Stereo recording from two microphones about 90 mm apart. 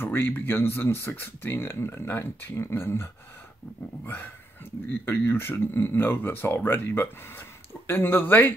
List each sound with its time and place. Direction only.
0.0 s speech: 25° left (ahead or behind)